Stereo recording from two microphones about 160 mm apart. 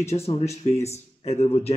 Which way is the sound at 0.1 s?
40° left (ahead or behind).